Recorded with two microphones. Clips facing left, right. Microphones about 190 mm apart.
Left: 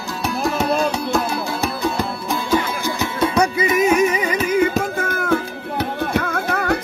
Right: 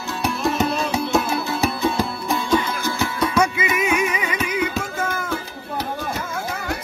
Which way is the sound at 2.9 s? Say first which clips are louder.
Left 2 dB; 20° left (ahead or behind).